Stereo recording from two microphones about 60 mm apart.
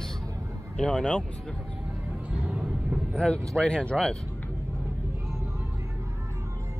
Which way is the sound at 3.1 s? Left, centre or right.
Centre.